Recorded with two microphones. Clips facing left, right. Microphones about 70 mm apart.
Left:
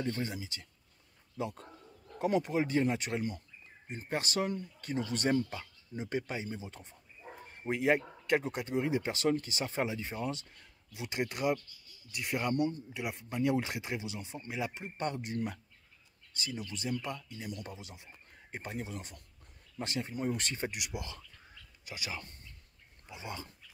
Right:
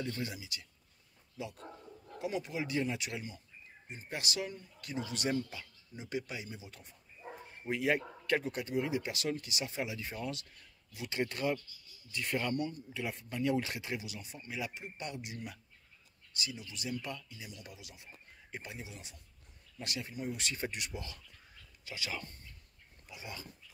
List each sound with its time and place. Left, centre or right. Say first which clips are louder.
0.0 s speech: left 3 dB; left
2.1 s speech: left 7 dB; left
14.8 s speech: left 6 dB; left
17.7 s speech: left 3 dB; left
18.7 s speech: left 7 dB; left
19.8 s speech: left 5 dB; left
20.7 s speech: left 2 dB; centre; by 23.5 s left